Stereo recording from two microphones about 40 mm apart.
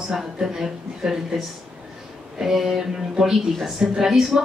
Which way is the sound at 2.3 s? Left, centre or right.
Centre.